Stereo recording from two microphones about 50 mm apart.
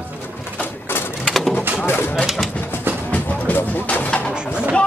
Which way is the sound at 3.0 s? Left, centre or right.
Left.